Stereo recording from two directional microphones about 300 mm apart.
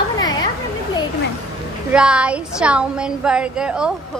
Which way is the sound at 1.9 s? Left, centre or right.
Centre.